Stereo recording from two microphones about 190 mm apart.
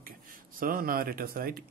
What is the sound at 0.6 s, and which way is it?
Speech, 50° right (ahead or behind).